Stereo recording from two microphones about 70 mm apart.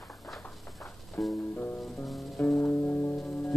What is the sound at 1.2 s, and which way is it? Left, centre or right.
Music, centre.